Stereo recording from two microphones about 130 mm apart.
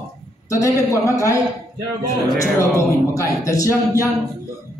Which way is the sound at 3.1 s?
25° left (ahead or behind).